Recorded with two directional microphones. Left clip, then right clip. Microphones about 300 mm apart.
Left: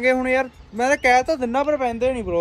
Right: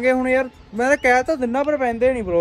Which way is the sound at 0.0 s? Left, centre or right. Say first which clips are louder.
Right 1 dB; centre.